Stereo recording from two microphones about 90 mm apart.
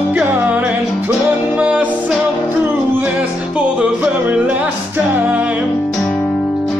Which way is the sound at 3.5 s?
10° right (ahead or behind).